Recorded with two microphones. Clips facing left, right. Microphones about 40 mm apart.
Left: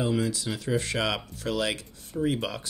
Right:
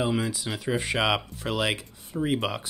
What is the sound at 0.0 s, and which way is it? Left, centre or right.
Speech, centre.